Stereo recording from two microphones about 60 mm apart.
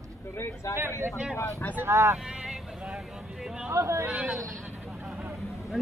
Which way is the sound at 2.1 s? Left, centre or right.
Centre.